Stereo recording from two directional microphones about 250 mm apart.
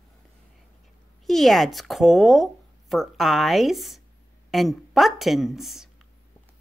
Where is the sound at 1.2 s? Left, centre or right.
Centre.